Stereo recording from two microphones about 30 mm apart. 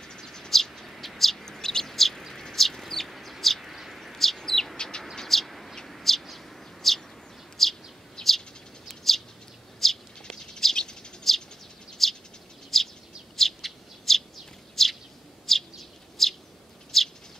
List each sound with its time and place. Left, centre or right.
0.0 s a sound: centre
0.5 s bird: centre
1.4 s bird: centre
2.5 s chicken: centre
3.6 s bird: centre
3.9 s bird: centre
8.2 s bird: left
8.8 s bird: centre
10.2 s bird: left
11.3 s bird: centre